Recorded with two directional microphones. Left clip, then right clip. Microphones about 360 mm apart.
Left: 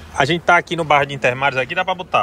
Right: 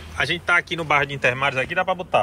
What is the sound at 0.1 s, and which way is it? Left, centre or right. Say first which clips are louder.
Speech: left 6 dB; centre.